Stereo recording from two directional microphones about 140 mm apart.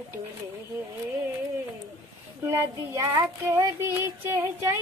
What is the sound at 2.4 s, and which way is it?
Child singing, 20° right (ahead or behind).